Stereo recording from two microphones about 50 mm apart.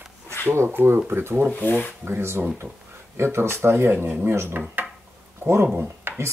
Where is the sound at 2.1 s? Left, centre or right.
Right.